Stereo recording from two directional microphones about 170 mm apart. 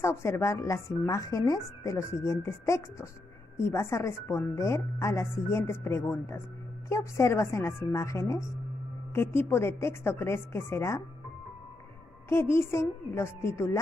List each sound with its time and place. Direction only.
0.0 s a woman's voice: 15° left (ahead or behind)
12.3 s a woman's voice: 15° left (ahead or behind)